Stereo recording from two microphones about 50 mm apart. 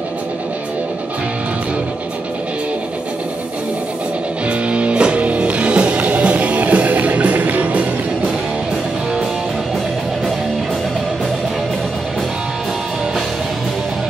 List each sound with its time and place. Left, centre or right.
4.5 s music: right